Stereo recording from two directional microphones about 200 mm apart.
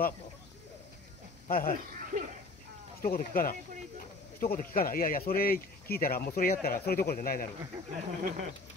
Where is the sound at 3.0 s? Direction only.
45° left (ahead or behind).